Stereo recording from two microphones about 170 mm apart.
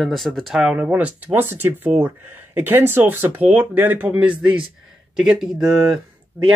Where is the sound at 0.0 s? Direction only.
Centre (ahead or behind).